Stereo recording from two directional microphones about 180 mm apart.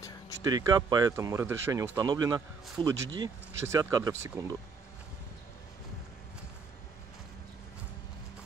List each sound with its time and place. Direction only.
0.4 s speech: 20° right (ahead or behind)